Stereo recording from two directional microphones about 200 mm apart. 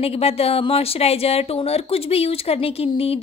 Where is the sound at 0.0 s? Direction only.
30° left (ahead or behind).